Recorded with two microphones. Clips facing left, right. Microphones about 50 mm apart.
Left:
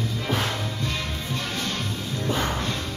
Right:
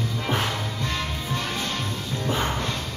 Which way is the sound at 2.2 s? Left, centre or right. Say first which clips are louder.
Even; centre.